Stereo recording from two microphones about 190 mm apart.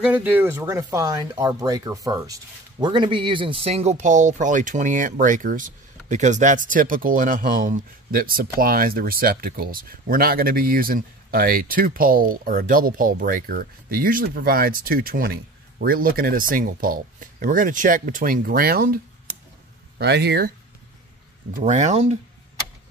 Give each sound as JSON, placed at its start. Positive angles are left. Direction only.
{"t": 0.0, "sound": "speech", "side_deg": -10}
{"t": 20.0, "sound": "speech", "side_deg": -60}
{"t": 21.5, "sound": "speech", "side_deg": -40}